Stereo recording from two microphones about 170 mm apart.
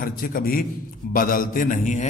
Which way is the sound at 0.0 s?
55° left (ahead or behind).